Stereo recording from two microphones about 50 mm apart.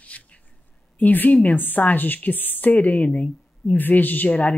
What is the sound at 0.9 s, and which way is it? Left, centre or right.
A woman's voice, left.